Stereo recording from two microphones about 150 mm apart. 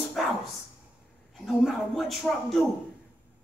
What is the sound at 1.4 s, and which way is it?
A man's voice, centre (ahead or behind).